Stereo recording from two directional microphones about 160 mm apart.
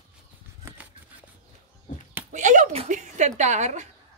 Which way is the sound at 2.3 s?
50° right (ahead or behind).